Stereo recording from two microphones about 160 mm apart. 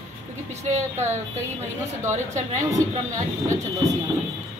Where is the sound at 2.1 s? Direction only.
50° right (ahead or behind).